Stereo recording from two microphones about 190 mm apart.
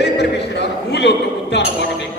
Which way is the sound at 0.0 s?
65° left (ahead or behind).